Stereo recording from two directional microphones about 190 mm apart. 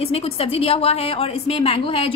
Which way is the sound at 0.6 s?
30° left (ahead or behind).